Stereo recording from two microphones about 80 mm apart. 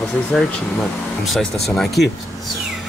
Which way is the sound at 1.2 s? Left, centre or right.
Centre.